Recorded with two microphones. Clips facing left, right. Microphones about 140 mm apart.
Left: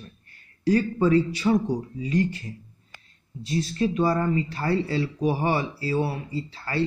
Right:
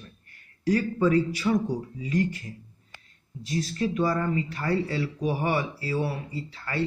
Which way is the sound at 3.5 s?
25° left (ahead or behind).